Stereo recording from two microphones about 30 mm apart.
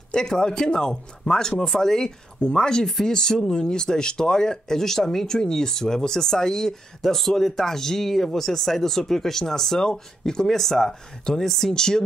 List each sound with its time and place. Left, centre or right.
0.1 s speech: left
7.1 s speech: centre
9.8 s speech: left
11.7 s speech: left